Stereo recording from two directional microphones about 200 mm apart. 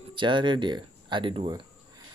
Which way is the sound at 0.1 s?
25° right (ahead or behind).